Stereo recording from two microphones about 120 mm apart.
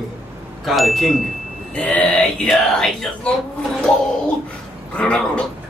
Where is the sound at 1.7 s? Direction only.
10° left (ahead or behind).